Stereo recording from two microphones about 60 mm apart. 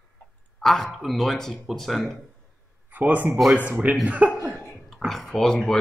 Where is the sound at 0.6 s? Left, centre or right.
Centre.